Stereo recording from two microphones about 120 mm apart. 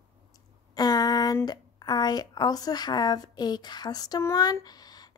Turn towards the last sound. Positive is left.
turn(degrees=35)  # may be behind; listen again after turning